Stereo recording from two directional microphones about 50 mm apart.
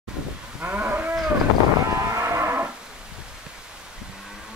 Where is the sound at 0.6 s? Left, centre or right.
Right.